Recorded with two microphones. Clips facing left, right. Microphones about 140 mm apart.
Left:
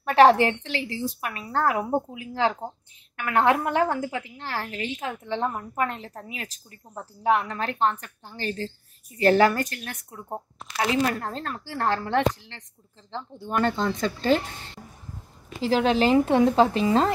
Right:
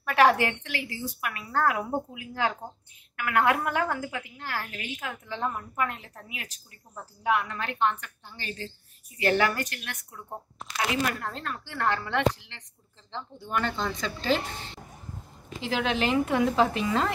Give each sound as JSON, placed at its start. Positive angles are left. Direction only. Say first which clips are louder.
{"t": 0.0, "sound": "a woman's voice", "louder": "left 5 dB", "side_deg": 30}
{"t": 15.6, "sound": "a woman's voice", "louder": "left 6 dB", "side_deg": 35}